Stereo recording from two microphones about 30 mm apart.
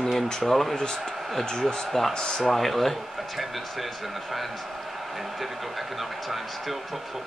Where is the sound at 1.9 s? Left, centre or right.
Centre.